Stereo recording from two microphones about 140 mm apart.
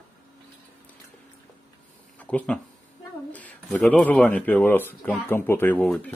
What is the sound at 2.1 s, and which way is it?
Speech, 10° left (ahead or behind).